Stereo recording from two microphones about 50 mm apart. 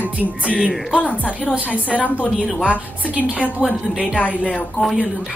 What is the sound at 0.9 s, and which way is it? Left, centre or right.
A woman's voice, left.